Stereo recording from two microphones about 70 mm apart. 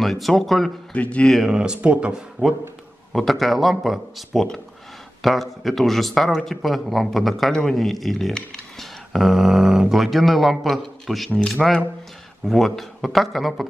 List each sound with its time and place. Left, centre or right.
0.0 s speech: centre
0.9 s speech: centre
1.2 s speech: centre
1.5 s speech: centre
3.1 s speech: centre